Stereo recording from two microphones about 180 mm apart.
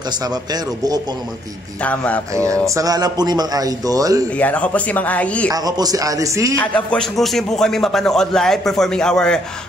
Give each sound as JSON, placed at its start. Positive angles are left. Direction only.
{"t": 0.2, "sound": "a man's voice", "side_deg": -20}
{"t": 1.8, "sound": "speech", "side_deg": 10}
{"t": 2.7, "sound": "a man's voice", "side_deg": -20}
{"t": 4.4, "sound": "speech", "side_deg": 10}
{"t": 5.5, "sound": "a man's voice", "side_deg": -20}
{"t": 6.6, "sound": "a man's voice", "side_deg": 5}